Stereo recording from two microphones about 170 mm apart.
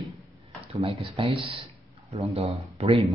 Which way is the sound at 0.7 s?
35° right (ahead or behind).